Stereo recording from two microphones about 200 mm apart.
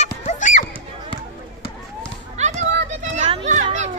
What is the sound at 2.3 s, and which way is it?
Children playing, 35° right (ahead or behind).